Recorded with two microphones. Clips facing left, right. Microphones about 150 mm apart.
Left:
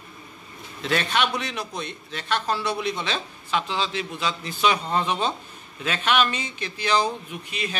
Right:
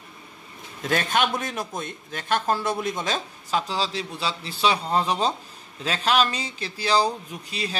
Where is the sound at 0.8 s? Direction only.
45° right (ahead or behind).